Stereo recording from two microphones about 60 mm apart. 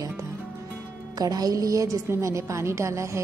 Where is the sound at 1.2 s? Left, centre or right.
Right.